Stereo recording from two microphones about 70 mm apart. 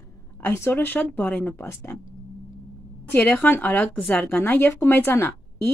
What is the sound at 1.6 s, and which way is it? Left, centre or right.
Speech, left.